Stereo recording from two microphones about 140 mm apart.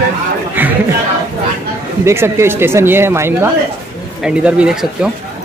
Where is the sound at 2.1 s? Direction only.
20° right (ahead or behind).